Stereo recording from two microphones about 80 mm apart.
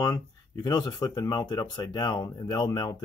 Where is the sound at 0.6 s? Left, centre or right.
Left.